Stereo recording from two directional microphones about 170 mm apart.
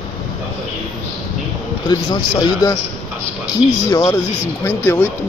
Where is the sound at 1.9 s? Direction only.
25° left (ahead or behind).